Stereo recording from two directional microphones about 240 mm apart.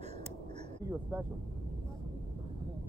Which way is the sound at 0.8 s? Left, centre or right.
Centre.